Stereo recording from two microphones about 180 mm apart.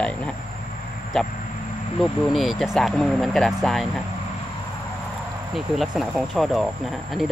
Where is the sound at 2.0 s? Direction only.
Centre (ahead or behind).